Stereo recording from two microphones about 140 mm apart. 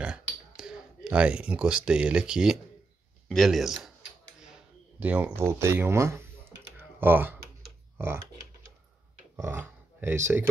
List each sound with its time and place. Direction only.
0.0 s a sound: 5° right (ahead or behind)
3.3 s speech: centre (ahead or behind)
5.0 s speech: 10° right (ahead or behind)
9.4 s speech: 20° right (ahead or behind)